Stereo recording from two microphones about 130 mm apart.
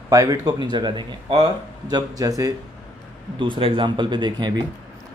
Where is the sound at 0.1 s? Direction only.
25° right (ahead or behind).